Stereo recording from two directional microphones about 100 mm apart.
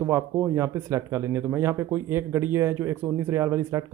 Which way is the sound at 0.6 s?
25° right (ahead or behind).